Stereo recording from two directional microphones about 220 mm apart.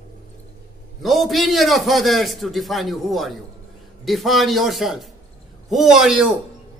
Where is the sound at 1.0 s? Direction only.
Centre (ahead or behind).